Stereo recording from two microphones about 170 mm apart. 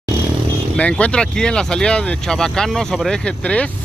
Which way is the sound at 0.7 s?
5° left (ahead or behind).